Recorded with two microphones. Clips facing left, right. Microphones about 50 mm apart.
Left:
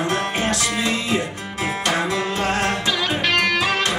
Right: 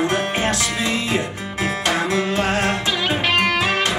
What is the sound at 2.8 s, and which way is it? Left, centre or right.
Music, centre.